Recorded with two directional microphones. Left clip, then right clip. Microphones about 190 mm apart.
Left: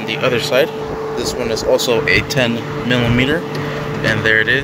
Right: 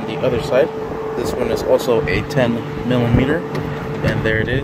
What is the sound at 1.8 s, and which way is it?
Speech, 10° right (ahead or behind).